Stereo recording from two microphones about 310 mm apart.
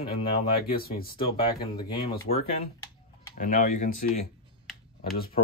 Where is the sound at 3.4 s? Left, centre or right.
Left.